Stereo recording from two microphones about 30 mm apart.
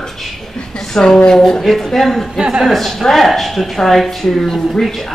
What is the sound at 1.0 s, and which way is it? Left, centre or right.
Speech, left.